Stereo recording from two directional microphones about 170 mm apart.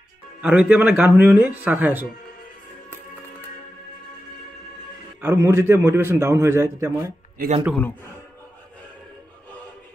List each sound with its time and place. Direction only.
0.4 s a man's voice: 5° right (ahead or behind)
5.2 s a man's voice: 15° right (ahead or behind)
7.4 s a man's voice: 60° right (ahead or behind)